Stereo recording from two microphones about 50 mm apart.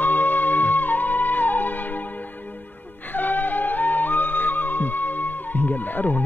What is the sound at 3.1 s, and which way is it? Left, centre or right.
Music, left.